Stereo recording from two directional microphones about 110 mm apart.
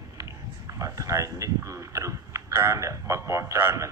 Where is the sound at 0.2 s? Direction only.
30° right (ahead or behind).